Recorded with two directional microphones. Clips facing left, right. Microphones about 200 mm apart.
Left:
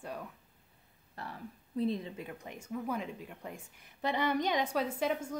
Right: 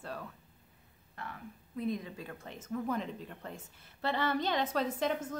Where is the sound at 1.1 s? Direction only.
35° left (ahead or behind).